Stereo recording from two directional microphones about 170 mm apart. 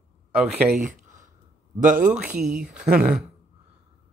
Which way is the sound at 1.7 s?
50° right (ahead or behind).